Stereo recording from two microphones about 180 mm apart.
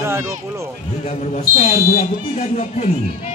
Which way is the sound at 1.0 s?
35° left (ahead or behind).